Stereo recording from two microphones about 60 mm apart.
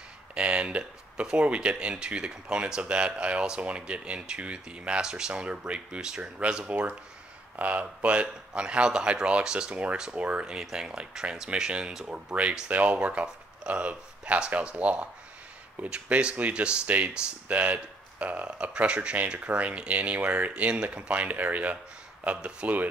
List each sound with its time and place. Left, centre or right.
0.3 s speech: centre